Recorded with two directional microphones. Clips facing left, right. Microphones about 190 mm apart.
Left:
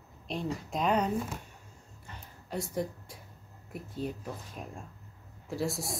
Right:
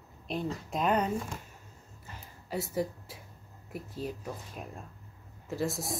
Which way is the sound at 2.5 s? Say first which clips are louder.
Right 1 dB; 5° right (ahead or behind).